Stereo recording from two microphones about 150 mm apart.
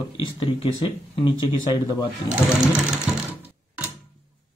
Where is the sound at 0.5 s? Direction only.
35° left (ahead or behind).